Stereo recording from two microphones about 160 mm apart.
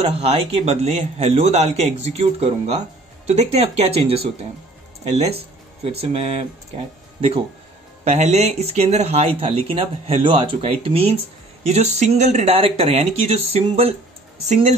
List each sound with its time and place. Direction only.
0.0 s speech: 40° right (ahead or behind)